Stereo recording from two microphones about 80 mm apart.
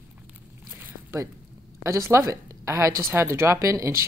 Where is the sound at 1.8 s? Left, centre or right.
Right.